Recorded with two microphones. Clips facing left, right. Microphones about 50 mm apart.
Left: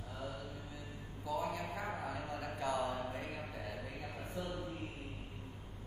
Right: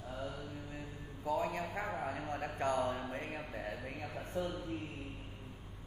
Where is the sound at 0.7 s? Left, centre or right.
Right.